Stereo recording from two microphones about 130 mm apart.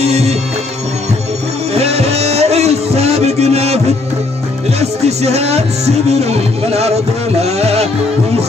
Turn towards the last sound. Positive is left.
turn(degrees=-55)  # may be behind; listen again after turning